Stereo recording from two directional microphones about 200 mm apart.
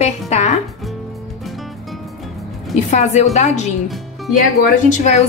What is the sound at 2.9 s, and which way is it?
A woman's voice, 35° left (ahead or behind).